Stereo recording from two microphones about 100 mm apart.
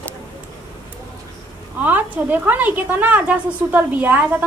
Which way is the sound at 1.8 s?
20° right (ahead or behind).